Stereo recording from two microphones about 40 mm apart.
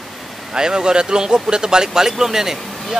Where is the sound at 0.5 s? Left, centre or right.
Centre.